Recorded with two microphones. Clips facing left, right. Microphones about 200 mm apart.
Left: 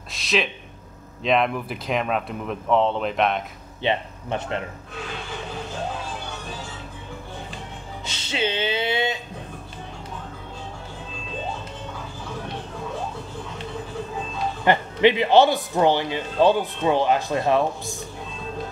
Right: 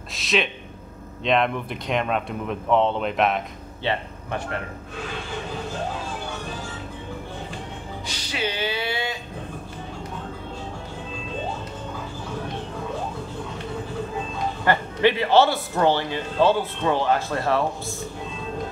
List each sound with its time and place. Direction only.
0.1 s speech: centre (ahead or behind)
3.8 s speech: 20° left (ahead or behind)
8.1 s music: 25° left (ahead or behind)
14.6 s a man's voice: 20° left (ahead or behind)